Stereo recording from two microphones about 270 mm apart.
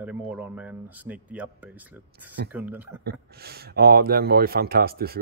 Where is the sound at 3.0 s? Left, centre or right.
Right.